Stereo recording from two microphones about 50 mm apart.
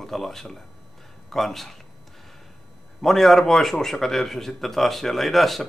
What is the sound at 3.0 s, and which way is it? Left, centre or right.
A man's voice, centre.